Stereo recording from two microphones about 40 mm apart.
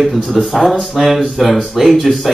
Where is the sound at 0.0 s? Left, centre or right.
Centre.